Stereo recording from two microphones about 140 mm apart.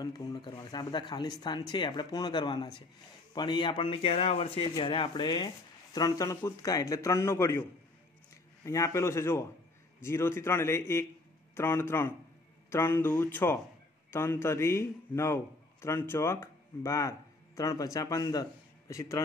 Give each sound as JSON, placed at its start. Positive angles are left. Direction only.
{"t": 0.0, "sound": "speech", "side_deg": 30}
{"t": 4.7, "sound": "a man's voice", "side_deg": 35}
{"t": 8.6, "sound": "a man's voice", "side_deg": 20}